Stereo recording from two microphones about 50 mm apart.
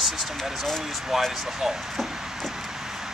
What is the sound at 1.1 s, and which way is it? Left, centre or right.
Speech, centre.